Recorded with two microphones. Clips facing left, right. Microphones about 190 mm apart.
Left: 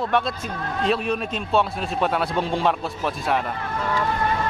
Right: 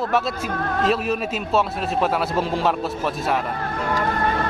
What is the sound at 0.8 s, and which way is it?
A man's voice, centre (ahead or behind).